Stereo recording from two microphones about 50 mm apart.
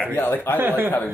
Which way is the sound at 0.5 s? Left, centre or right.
Right.